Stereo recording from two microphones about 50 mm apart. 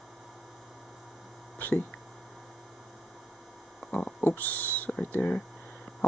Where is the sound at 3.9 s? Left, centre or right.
Left.